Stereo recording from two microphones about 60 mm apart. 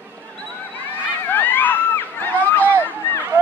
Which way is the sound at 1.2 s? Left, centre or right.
Left.